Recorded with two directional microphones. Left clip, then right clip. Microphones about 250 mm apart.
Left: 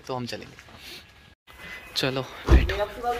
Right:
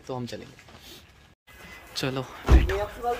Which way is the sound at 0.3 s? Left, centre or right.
Centre.